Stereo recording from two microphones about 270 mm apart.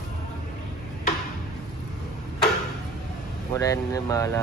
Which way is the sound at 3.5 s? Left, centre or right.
Centre.